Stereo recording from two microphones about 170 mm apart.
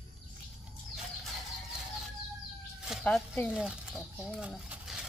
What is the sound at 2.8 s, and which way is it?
Speech, centre (ahead or behind).